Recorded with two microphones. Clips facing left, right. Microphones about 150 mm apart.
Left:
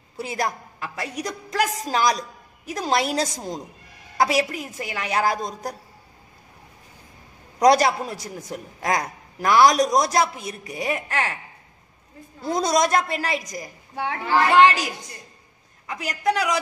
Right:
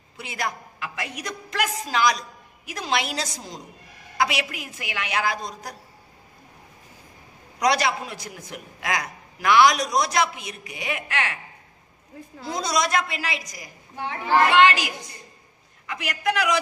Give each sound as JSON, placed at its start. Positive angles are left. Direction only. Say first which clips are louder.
{"t": 0.2, "sound": "a man's voice", "louder": "left 4 dB", "side_deg": 40}
{"t": 7.5, "sound": "a man's voice", "louder": "left 6 dB", "side_deg": 45}
{"t": 12.4, "sound": "a woman's voice", "louder": "left 5 dB", "side_deg": 50}
{"t": 13.9, "sound": "a child's voice", "louder": "left 4 dB", "side_deg": 75}
{"t": 15.9, "sound": "a man's voice", "louder": "left 2 dB", "side_deg": 30}